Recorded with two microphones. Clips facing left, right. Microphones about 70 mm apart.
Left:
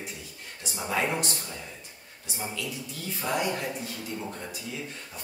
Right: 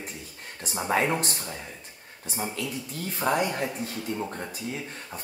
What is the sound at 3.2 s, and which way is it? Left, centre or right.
Speech, right.